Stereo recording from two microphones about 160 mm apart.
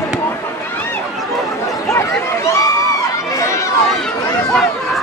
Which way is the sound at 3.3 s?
20° left (ahead or behind).